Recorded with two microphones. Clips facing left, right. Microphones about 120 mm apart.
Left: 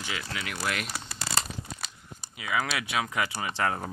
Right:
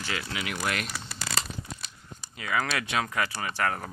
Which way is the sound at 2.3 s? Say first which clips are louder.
Right 1 dB; 10° left (ahead or behind).